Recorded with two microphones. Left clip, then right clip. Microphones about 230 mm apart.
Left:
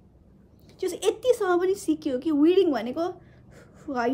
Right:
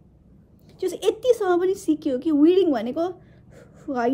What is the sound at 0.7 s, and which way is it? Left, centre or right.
A woman's voice, centre.